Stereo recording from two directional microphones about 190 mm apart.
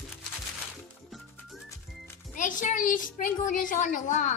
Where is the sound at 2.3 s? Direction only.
40° left (ahead or behind).